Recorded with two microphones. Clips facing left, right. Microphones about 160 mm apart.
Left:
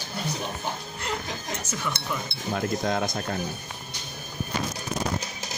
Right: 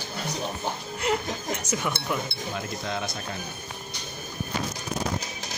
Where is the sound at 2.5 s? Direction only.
50° left (ahead or behind).